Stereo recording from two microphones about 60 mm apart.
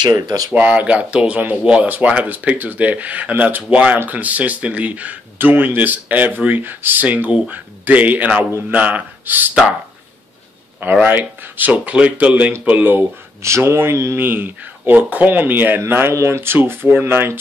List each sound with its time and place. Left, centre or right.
0.1 s speech: right
0.6 s speech: right
7.2 s speech: right
9.5 s speech: centre
10.8 s speech: right
13.4 s speech: right
14.1 s speech: right